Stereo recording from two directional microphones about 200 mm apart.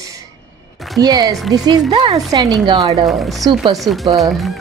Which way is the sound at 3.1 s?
Centre (ahead or behind).